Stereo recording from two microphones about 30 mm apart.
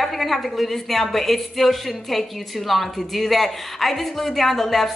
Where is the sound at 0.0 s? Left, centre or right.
Centre.